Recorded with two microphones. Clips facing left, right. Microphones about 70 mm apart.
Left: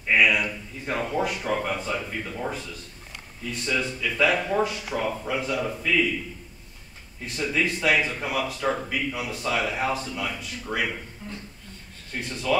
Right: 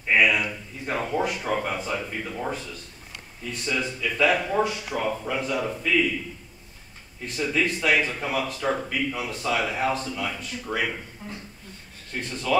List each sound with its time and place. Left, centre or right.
0.1 s speech: centre
3.6 s speech: centre
7.3 s speech: centre
11.2 s speech: right
12.2 s speech: centre